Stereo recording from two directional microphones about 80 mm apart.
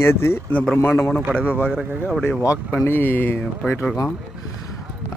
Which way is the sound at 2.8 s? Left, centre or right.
Left.